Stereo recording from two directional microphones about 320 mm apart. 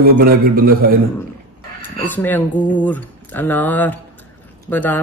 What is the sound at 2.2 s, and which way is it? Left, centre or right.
Speech, centre.